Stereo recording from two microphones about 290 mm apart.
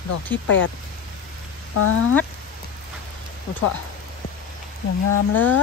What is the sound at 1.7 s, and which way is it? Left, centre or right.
Speech, left.